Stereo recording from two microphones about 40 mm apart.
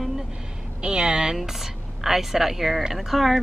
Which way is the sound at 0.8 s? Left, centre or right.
Centre.